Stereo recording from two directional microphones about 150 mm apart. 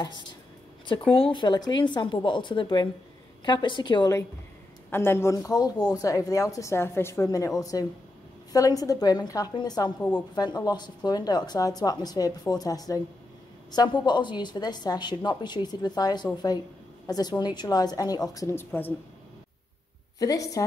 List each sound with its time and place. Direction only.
1.1 s a woman's voice: 35° left (ahead or behind); by 18.9 s 15° left (ahead or behind)
20.2 s a woman's voice: 25° left (ahead or behind)